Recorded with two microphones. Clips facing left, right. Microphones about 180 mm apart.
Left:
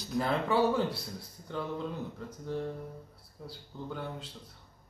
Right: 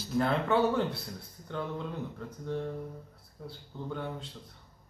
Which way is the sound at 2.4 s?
5° left (ahead or behind).